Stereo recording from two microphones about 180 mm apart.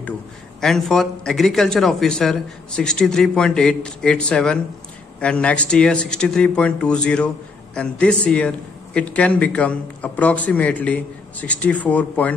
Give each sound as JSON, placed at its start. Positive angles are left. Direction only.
{"t": 0.6, "sound": "a man's voice", "side_deg": 0}